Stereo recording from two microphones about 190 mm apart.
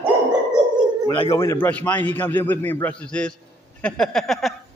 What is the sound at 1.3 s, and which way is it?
A man's voice, 10° left (ahead or behind).